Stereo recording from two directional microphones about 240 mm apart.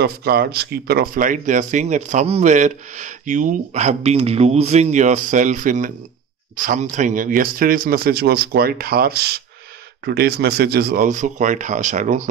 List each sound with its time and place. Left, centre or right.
0.0 s speech: right